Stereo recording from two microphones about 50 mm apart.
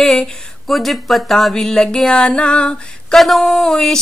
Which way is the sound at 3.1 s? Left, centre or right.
Centre.